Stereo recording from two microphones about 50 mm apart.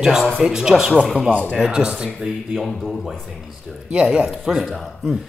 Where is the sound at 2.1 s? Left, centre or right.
Centre.